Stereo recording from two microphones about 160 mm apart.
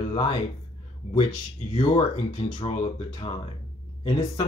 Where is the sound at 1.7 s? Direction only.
30° left (ahead or behind).